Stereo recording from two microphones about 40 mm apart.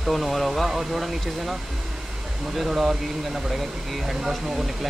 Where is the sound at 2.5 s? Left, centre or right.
Centre.